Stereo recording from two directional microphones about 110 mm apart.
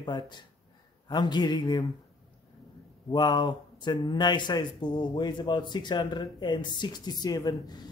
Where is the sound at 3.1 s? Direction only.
40° left (ahead or behind).